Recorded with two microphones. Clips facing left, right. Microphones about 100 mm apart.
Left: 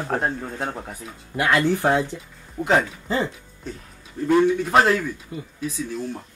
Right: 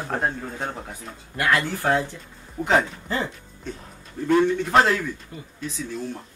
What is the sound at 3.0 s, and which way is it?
Music, 15° left (ahead or behind).